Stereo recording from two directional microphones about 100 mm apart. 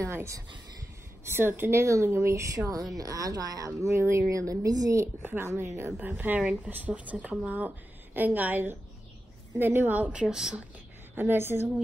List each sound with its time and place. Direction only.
0.0 s speech: 30° right (ahead or behind)
5.0 s a woman's voice: 20° right (ahead or behind); by 10.6 s 5° right (ahead or behind)
11.1 s speech: 20° right (ahead or behind)